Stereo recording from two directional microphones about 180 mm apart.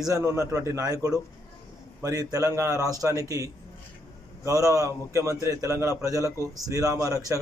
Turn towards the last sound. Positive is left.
turn(degrees=-20)  # may be behind; listen again after turning